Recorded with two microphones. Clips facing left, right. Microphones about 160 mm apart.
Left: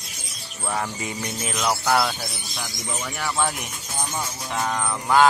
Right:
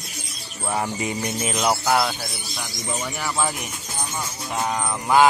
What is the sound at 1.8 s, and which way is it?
Speech, 5° right (ahead or behind).